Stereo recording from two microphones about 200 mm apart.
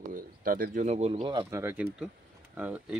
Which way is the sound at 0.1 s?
45° right (ahead or behind).